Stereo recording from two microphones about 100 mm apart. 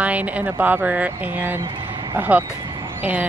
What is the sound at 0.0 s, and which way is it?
A woman's voice, 15° right (ahead or behind).